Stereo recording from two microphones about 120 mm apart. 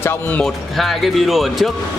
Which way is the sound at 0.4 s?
Centre (ahead or behind).